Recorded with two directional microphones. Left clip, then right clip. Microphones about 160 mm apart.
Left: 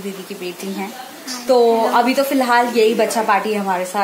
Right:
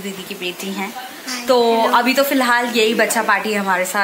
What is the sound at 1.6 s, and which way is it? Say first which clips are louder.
Speech: left 1 dB; 15° right (ahead or behind).